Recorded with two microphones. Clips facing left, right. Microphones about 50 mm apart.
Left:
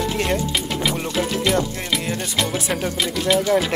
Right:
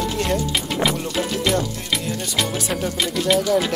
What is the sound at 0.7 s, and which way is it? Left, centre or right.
Music, centre.